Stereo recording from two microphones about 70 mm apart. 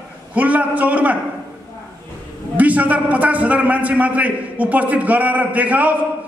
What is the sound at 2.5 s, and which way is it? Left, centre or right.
A man's voice, right.